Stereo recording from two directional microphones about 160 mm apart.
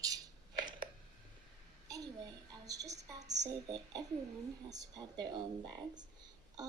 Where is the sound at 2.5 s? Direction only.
20° right (ahead or behind).